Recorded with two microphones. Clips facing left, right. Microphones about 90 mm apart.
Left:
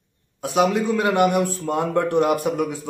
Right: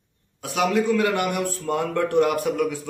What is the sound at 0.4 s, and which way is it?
Speech, 25° left (ahead or behind).